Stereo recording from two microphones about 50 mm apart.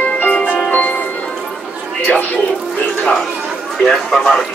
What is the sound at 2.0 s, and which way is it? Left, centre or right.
Bird, left.